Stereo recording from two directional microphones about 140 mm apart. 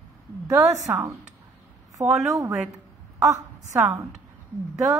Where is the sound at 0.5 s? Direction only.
15° right (ahead or behind).